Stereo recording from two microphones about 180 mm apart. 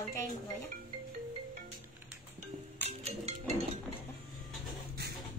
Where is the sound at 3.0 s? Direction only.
35° right (ahead or behind).